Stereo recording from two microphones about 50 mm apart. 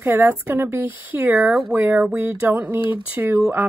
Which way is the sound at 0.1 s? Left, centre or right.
Right.